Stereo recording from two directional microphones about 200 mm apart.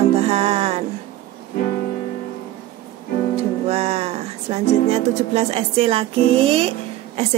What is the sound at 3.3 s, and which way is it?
Music, 30° right (ahead or behind).